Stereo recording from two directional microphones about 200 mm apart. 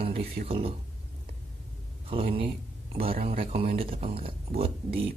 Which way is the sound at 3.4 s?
30° right (ahead or behind).